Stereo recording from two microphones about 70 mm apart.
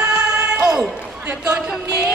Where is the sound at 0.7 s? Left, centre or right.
Centre.